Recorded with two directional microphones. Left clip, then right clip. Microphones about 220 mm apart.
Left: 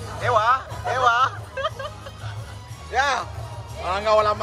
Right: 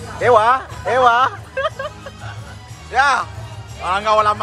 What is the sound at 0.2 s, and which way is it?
Speech, 30° right (ahead or behind).